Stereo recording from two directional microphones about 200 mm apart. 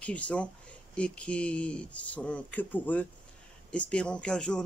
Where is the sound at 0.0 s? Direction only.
5° left (ahead or behind).